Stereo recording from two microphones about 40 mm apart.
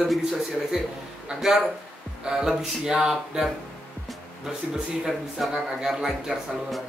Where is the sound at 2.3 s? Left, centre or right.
Centre.